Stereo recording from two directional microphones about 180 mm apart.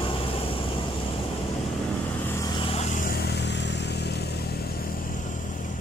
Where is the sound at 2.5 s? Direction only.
30° left (ahead or behind); by 4.7 s 60° left (ahead or behind).